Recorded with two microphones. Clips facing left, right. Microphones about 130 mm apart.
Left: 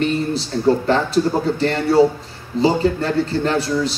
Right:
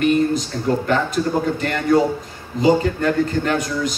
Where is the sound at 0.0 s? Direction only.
30° left (ahead or behind).